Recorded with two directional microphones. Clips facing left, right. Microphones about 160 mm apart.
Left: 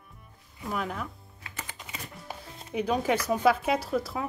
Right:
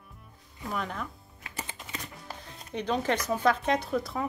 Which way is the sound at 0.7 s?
5° left (ahead or behind).